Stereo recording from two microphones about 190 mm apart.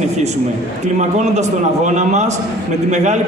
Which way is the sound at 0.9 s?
35° right (ahead or behind).